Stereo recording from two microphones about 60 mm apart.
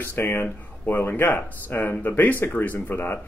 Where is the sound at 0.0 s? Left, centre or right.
Left.